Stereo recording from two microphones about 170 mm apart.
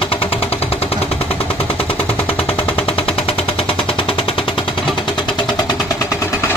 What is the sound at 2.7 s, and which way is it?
Machine gun, 35° left (ahead or behind).